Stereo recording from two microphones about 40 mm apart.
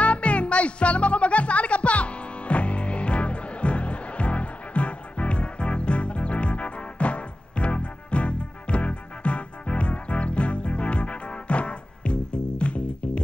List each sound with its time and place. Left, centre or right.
0.0 s music: left